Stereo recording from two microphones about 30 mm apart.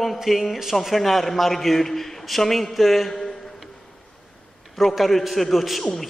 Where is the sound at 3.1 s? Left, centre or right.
Centre.